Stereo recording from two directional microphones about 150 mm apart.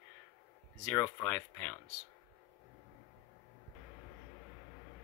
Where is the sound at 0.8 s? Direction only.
10° left (ahead or behind).